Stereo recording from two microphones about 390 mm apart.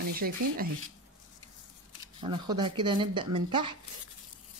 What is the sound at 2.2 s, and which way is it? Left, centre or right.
Speech, centre.